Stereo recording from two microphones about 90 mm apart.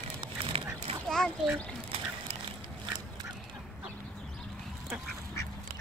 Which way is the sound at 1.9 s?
90° right.